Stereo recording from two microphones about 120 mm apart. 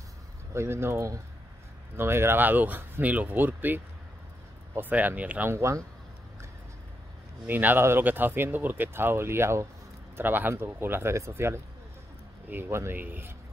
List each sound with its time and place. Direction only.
0.6 s speech: 20° right (ahead or behind)
5.5 s speech: 25° right (ahead or behind)
7.4 s speech: 15° right (ahead or behind)